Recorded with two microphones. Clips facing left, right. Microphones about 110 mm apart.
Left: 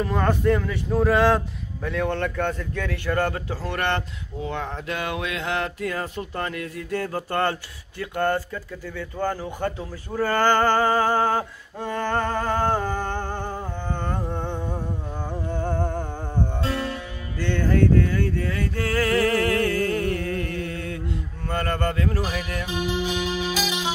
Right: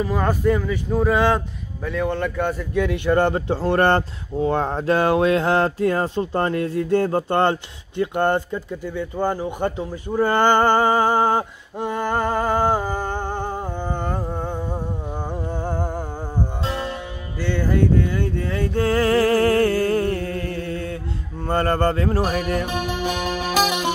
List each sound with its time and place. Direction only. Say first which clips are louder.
0.0 s speech: right 2 dB; 5° right (ahead or behind)
14.0 s a sound: right 2 dB; 10° right (ahead or behind)
15.5 s music: left 2 dB; 10° right (ahead or behind)
16.6 s music: right 1 dB; 20° right (ahead or behind)
17.4 s a sound: right 1 dB; 10° right (ahead or behind); by 20.8 s 35° right (ahead or behind)
21.5 s speech: right 6 dB; 30° right (ahead or behind)
22.2 s music: right 7 dB; 50° right (ahead or behind)